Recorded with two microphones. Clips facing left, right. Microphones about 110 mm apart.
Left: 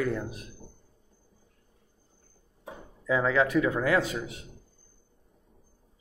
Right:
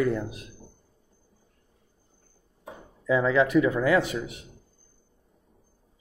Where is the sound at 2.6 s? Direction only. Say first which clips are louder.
Right 3 dB; 10° right (ahead or behind).